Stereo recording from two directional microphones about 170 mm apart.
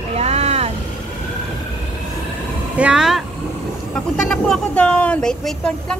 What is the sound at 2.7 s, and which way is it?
Speech, 5° right (ahead or behind).